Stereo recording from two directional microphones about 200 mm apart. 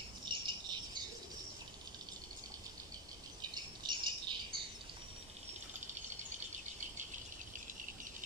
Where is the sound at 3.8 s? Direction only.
25° right (ahead or behind).